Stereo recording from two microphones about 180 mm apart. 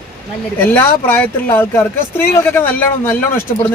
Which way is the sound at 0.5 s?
10° left (ahead or behind).